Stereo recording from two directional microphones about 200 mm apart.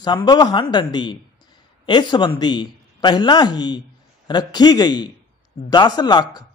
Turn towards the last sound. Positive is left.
turn(degrees=20)  # may be behind; listen again after turning